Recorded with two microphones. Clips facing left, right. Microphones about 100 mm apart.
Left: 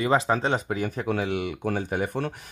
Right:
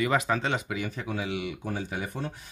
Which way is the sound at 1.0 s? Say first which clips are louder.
Left 6 dB; 60° left (ahead or behind).